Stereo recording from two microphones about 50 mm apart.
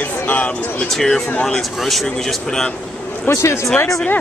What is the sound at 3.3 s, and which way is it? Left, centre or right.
Speech, left.